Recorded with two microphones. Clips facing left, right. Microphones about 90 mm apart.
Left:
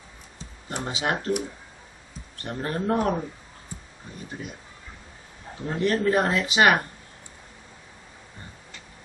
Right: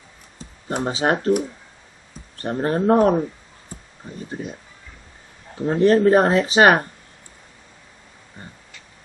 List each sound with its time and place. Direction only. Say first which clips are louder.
0.7 s speech: right 7 dB; 40° right (ahead or behind)
3.7 s a sound: right 2 dB; 40° right (ahead or behind)
4.3 s speech: right 6 dB; 35° right (ahead or behind)
5.7 s speech: right 9 dB; 35° right (ahead or behind)